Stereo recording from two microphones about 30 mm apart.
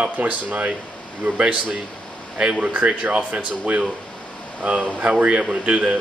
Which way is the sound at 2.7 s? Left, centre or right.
Right.